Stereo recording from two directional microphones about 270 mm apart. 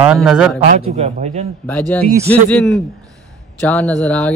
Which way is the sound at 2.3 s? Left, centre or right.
Centre.